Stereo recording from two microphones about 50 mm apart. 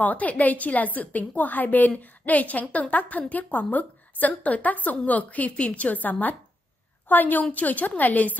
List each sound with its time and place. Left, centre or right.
0.0 s a woman's voice: left